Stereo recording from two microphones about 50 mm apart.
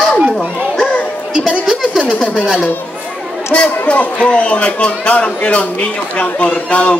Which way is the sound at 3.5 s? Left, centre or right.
Left.